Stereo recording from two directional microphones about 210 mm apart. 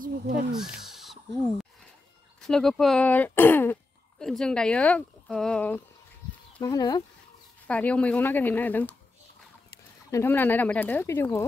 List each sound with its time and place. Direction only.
0.6 s speech: centre (ahead or behind)
6.6 s speech: 20° left (ahead or behind)
7.6 s speech: 5° left (ahead or behind)
10.1 s speech: 10° left (ahead or behind)